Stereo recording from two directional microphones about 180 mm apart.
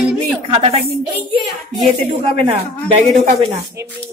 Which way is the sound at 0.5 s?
35° right (ahead or behind).